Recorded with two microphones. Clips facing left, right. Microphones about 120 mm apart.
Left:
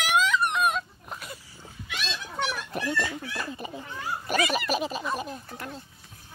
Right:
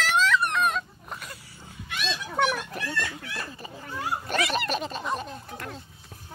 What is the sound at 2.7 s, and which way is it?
Speech, 20° left (ahead or behind).